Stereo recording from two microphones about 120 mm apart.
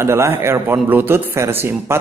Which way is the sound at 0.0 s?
20° right (ahead or behind).